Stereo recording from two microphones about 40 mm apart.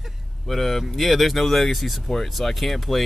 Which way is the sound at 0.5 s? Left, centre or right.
Centre.